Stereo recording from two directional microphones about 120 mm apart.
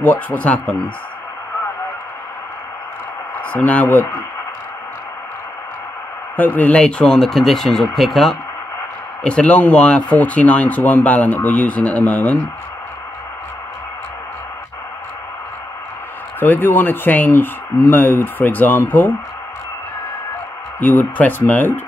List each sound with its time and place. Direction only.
0.0 s speech: 15° left (ahead or behind)
3.3 s speech: 15° left (ahead or behind)
6.3 s speech: 15° left (ahead or behind)
16.3 s speech: 15° left (ahead or behind)
20.8 s speech: 15° left (ahead or behind)